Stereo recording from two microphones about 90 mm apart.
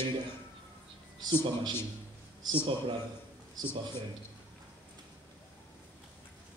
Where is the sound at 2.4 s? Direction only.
55° right (ahead or behind).